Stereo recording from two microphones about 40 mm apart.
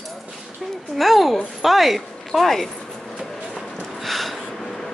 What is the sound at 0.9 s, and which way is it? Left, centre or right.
Speech, centre.